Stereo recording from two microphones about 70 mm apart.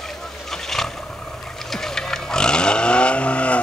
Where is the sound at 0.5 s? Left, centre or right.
Centre.